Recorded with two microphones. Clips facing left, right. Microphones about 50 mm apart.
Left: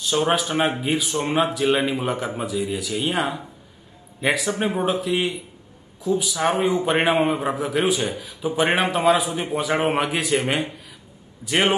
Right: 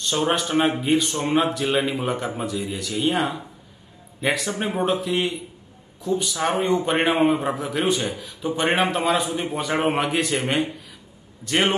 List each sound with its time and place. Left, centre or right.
0.0 s a man's voice: centre